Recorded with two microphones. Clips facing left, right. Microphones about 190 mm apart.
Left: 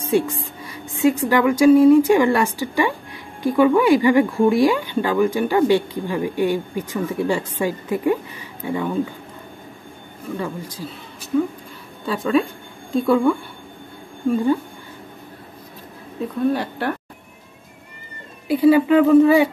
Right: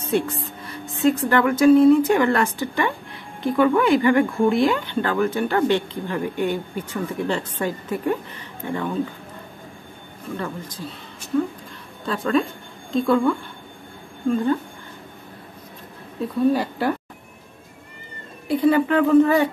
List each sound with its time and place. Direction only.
0.0 s speech: 10° left (ahead or behind)
10.3 s speech: 10° left (ahead or behind)
16.5 s speech: 10° right (ahead or behind)
18.6 s speech: 10° left (ahead or behind)